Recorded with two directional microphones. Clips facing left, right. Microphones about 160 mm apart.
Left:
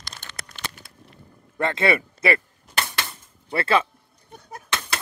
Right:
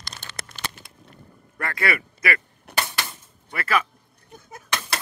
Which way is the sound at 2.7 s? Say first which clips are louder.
Right 1 dB; 65° right (ahead or behind).